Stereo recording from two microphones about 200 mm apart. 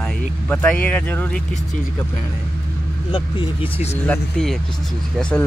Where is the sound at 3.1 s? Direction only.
30° left (ahead or behind).